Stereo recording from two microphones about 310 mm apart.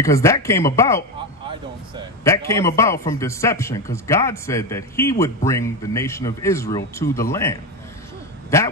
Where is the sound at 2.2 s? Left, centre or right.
Centre.